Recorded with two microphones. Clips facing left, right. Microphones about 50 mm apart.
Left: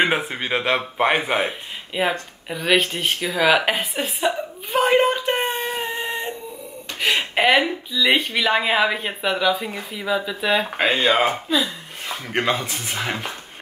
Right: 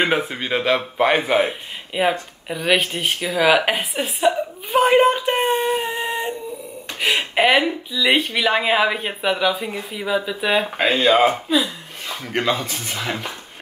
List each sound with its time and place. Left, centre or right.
0.3 s speech: centre
1.9 s a woman's voice: centre
5.7 s a sound: centre
6.0 s a sound: centre
7.0 s a woman's voice: centre
12.1 s speech: centre